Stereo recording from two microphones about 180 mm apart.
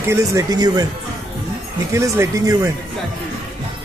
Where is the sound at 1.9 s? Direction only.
15° right (ahead or behind).